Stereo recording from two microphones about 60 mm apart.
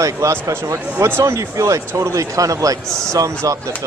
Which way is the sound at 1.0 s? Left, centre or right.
Right.